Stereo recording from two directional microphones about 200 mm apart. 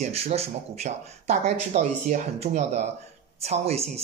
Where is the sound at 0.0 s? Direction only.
30° right (ahead or behind).